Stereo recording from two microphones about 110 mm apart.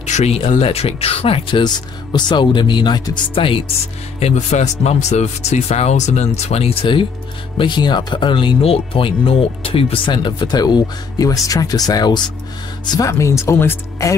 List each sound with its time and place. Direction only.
0.0 s speech: 90° left
0.6 s speech: 65° left (ahead or behind)
2.1 s speech: 40° left (ahead or behind)
4.2 s speech: 80° left; by 12.2 s 40° left (ahead or behind)
12.9 s speech: 30° left (ahead or behind)